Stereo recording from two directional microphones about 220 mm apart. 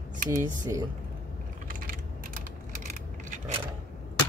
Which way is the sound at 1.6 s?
40° right (ahead or behind).